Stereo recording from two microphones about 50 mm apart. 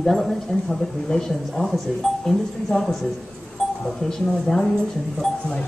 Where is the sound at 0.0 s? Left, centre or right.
Centre.